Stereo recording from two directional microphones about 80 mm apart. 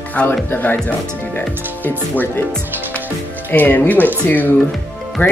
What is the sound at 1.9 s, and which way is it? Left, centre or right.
Speech, left.